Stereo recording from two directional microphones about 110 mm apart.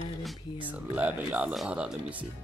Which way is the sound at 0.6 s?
15° right (ahead or behind).